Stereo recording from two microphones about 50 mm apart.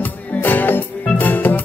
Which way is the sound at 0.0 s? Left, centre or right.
Left.